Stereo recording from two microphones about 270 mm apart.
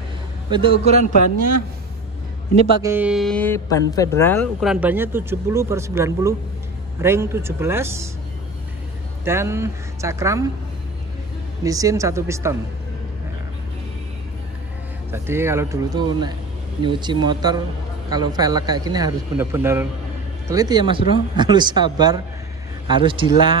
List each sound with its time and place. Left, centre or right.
0.5 s a man's voice: centre
2.8 s a sound: centre
3.9 s speech: centre
9.2 s speech: centre
11.6 s speech: centre
15.0 s speech: centre